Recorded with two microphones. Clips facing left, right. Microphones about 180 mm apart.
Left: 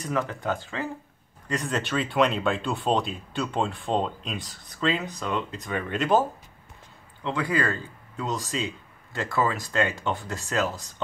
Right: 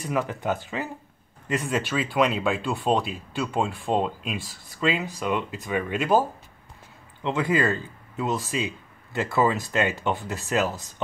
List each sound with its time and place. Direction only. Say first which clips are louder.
0.0 s speech: right 1 dB; 5° right (ahead or behind)
0.3 s speech: right 2 dB; 15° right (ahead or behind)
1.6 s speech: even; centre (ahead or behind)
7.2 s speech: right 3 dB; 20° right (ahead or behind)